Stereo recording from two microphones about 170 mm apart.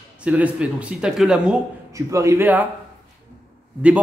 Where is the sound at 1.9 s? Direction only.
20° right (ahead or behind).